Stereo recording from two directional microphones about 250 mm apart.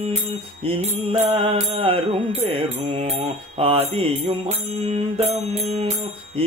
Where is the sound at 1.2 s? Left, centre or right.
Right.